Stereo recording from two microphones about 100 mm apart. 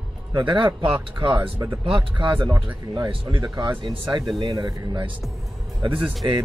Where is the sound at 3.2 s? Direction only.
40° right (ahead or behind).